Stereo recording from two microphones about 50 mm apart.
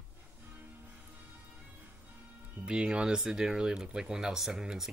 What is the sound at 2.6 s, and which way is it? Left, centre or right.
Speech, centre.